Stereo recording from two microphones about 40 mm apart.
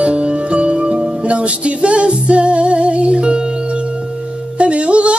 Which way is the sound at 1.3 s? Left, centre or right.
Right.